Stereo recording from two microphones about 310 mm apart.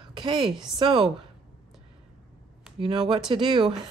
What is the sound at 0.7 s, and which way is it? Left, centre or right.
Speech, centre.